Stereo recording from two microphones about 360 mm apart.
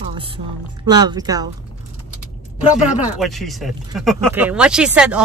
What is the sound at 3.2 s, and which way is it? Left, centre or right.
Speech, centre.